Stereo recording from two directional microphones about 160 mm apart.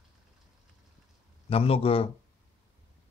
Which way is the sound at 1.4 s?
35° left (ahead or behind).